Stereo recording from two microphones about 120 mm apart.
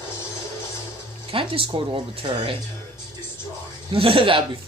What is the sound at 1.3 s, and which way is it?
Speech, 50° right (ahead or behind).